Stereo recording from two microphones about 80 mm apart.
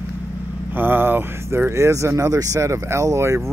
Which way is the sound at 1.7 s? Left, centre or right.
Right.